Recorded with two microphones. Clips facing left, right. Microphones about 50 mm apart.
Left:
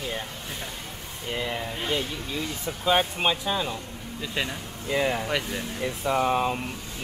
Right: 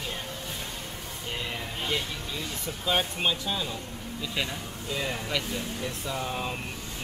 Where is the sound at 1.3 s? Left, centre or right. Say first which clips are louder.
Left 5 dB; centre.